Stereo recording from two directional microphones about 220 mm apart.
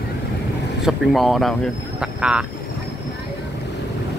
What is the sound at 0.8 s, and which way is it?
Speech, centre (ahead or behind).